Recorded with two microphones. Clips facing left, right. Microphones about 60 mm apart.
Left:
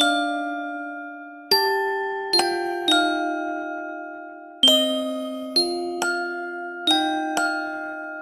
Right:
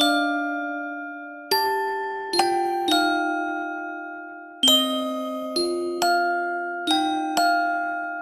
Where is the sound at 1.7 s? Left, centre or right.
Centre.